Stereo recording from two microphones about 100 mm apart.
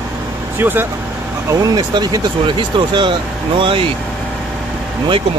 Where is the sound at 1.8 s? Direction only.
45° right (ahead or behind).